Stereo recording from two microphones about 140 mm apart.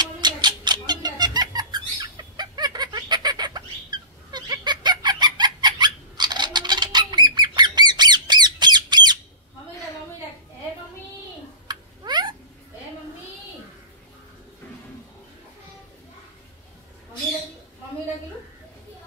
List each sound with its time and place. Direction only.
0.0 s cat: 30° right (ahead or behind)
11.6 s babbling: 30° right (ahead or behind)